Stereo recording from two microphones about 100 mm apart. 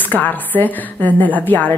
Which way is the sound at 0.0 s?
15° left (ahead or behind).